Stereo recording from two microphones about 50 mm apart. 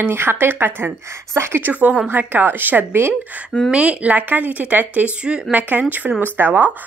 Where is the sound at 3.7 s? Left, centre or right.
Right.